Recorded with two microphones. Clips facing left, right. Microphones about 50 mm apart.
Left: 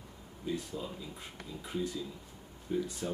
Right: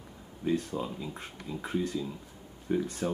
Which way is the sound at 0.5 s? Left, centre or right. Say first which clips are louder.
Right 7 dB; right.